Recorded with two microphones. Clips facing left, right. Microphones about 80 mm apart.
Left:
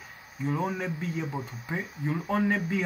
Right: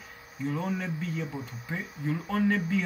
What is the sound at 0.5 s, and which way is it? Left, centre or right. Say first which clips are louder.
Speech: left 2 dB; centre.